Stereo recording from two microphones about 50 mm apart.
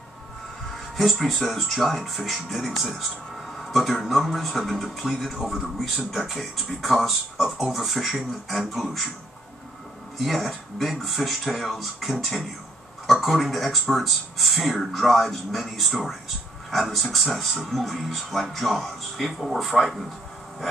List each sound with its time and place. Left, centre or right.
0.9 s speech: centre
10.1 s speech: centre